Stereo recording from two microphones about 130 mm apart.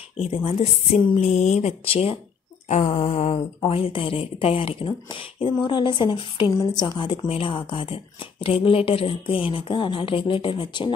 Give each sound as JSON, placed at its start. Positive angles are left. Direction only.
{"t": 0.2, "sound": "speech", "side_deg": 50}
{"t": 2.7, "sound": "speech", "side_deg": 65}